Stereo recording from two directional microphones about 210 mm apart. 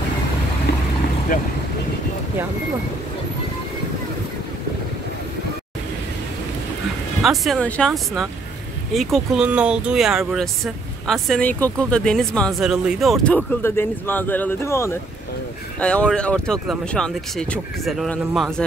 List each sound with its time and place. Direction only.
7.2 s speech: centre (ahead or behind)